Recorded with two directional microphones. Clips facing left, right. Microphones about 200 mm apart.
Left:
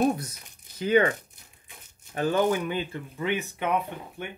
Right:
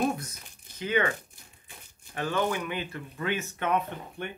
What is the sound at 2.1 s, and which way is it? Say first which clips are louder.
Speech: left 5 dB; 35° left (ahead or behind).